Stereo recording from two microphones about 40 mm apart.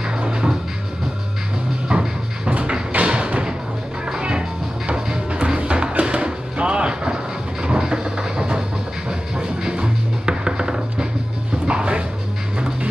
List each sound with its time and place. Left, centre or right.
0.2 s music: right
1.9 s music: right
7.6 s a sound: centre
9.4 s music: centre